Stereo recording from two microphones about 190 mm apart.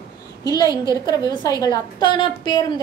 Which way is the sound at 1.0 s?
20° left (ahead or behind).